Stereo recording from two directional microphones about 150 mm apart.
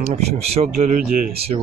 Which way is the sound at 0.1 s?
45° right (ahead or behind).